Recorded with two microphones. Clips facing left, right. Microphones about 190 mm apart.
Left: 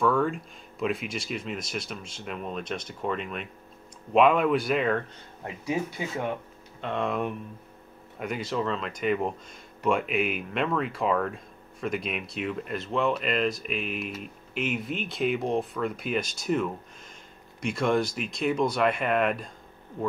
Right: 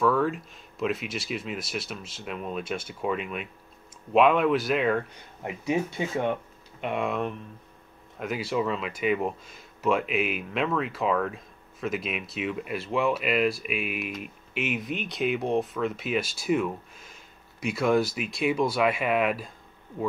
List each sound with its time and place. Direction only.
0.0 s speech: centre (ahead or behind)
5.1 s speech: 20° right (ahead or behind)
6.8 s speech: 10° right (ahead or behind)
8.2 s speech: 5° right (ahead or behind)